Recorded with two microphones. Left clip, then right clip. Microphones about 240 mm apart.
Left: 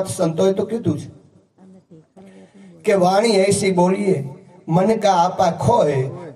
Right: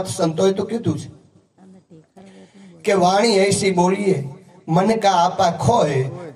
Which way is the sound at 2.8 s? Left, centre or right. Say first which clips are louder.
Even; right.